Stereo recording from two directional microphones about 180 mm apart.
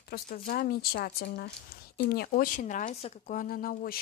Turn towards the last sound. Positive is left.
turn(degrees=55)  # may be behind; listen again after turning